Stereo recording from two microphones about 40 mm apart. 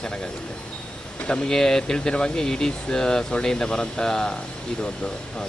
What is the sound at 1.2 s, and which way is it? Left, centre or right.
Speech, left.